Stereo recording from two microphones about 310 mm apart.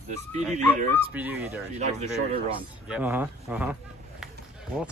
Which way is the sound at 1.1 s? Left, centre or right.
Centre.